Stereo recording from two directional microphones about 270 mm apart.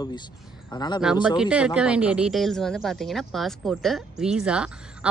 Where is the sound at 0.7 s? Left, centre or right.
Centre.